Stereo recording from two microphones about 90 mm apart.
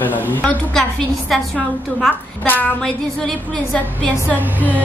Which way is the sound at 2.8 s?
10° left (ahead or behind).